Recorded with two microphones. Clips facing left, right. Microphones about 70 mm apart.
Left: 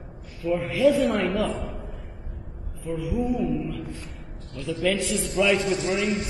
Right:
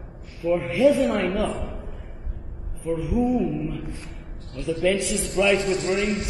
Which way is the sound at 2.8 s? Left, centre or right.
Right.